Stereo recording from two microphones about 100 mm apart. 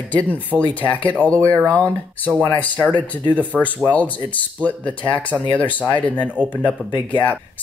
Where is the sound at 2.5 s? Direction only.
15° left (ahead or behind).